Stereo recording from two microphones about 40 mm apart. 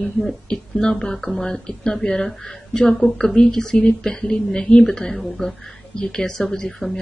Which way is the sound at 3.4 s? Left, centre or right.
Centre.